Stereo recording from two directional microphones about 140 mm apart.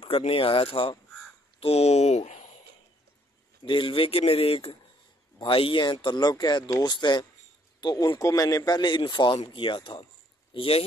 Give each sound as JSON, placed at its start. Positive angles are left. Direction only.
{"t": 0.0, "sound": "speech", "side_deg": 45}
{"t": 3.6, "sound": "a man's voice", "side_deg": 35}